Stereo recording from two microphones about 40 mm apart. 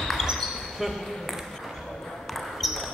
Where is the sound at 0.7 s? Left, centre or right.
Centre.